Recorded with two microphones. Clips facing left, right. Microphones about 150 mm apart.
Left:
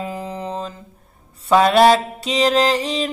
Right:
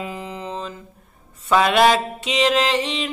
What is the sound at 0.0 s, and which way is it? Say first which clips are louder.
Mantra: left 3 dB; 40° left (ahead or behind).